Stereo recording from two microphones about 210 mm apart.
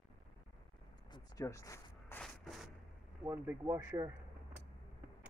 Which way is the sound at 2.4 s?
Centre (ahead or behind).